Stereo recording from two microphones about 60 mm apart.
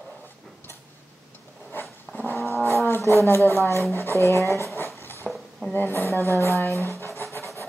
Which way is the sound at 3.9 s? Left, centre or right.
Left.